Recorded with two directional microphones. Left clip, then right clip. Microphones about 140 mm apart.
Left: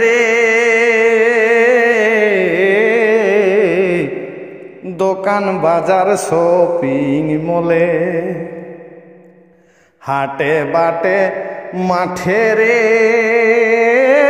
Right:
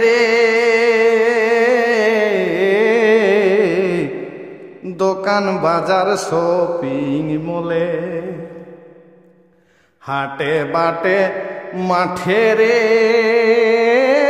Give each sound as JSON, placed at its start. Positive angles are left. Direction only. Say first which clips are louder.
{"t": 0.0, "sound": "music", "louder": "left 1 dB", "side_deg": 10}
{"t": 5.0, "sound": "mantra", "louder": "left 2 dB", "side_deg": 5}
{"t": 7.6, "sound": "music", "louder": "left 6 dB", "side_deg": 20}
{"t": 10.0, "sound": "mantra", "louder": "left 4 dB", "side_deg": 20}
{"t": 12.0, "sound": "music", "louder": "even", "side_deg": 20}